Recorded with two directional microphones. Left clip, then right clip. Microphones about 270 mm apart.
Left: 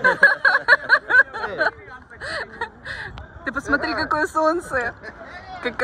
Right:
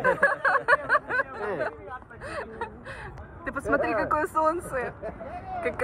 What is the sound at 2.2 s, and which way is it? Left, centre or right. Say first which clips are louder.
Chuckle: left 7 dB; centre.